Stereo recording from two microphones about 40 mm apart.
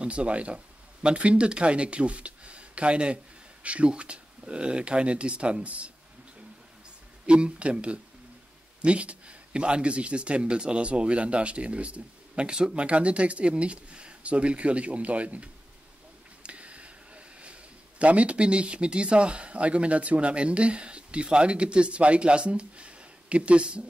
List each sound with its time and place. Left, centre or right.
0.0 s speech: right
7.2 s speech: right